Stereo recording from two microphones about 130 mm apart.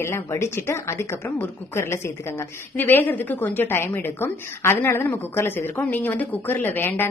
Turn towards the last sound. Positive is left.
turn(degrees=15)  # may be behind; listen again after turning